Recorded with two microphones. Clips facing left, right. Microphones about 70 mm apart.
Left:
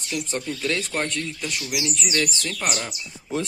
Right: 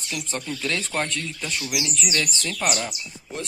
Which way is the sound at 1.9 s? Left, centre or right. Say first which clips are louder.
Even; left.